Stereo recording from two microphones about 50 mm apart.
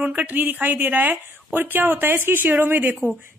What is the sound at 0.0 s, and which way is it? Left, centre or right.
A woman's voice, right.